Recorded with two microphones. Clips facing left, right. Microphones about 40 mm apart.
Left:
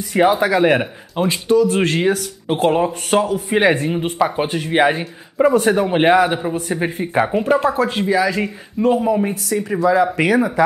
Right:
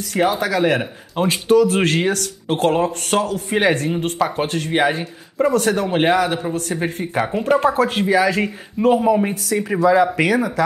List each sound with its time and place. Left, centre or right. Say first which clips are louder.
0.1 s speech: left 4 dB; centre
1.1 s speech: right 1 dB; centre
10.2 s speech: left 2 dB; centre